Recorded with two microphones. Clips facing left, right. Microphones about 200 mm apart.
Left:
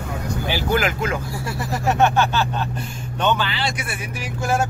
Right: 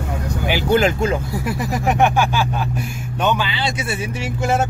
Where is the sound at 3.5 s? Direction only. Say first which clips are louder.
Right 3 dB; 25° right (ahead or behind).